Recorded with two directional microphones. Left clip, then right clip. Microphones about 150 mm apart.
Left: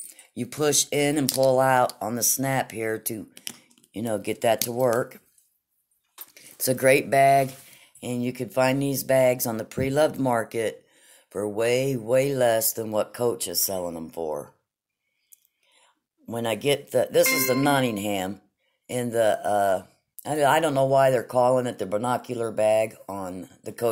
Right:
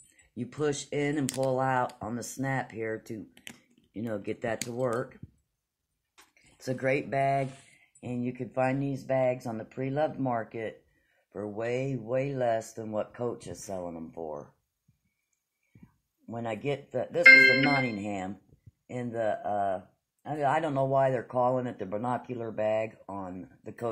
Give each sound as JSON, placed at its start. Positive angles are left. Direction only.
{"t": 0.3, "sound": "speech", "side_deg": 30}
{"t": 6.3, "sound": "speech", "side_deg": 40}
{"t": 9.0, "sound": "speech", "side_deg": 55}
{"t": 11.2, "sound": "speech", "side_deg": 35}
{"t": 16.3, "sound": "speech", "side_deg": 35}
{"t": 20.6, "sound": "speech", "side_deg": 25}